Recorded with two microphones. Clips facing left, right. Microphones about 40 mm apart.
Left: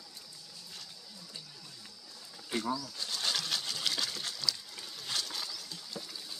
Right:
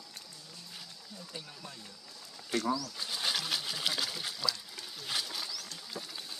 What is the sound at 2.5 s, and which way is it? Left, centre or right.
Speech, centre.